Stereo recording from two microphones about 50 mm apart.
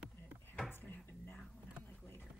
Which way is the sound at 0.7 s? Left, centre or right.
Left.